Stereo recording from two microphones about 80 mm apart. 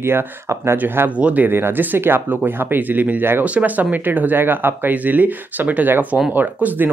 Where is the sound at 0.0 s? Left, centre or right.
Right.